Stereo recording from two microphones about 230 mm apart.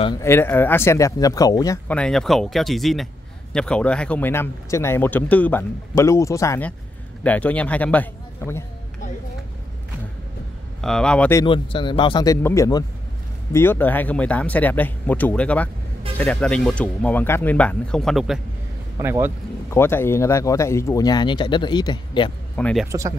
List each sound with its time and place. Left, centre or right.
0.0 s speech: centre
10.8 s speech: centre
11.4 s speech: left; by 19.3 s centre
19.7 s speech: centre
22.6 s speech: centre
22.8 s speech: centre